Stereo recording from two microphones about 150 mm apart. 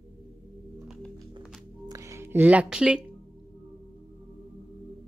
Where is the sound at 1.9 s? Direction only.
20° right (ahead or behind).